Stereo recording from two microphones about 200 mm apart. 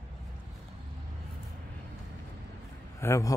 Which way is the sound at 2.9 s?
15° left (ahead or behind).